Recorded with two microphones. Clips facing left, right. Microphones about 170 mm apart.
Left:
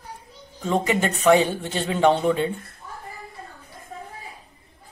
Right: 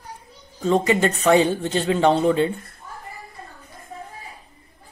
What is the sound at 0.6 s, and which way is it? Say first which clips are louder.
Speech: right 4 dB; 15° left (ahead or behind).